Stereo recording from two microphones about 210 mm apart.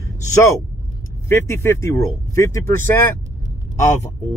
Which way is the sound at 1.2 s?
15° left (ahead or behind).